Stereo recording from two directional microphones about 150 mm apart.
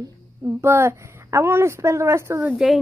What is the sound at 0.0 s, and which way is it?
A woman's voice, 20° right (ahead or behind).